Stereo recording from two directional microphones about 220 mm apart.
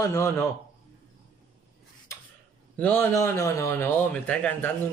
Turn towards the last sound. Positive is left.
turn(degrees=5)  # may be behind; listen again after turning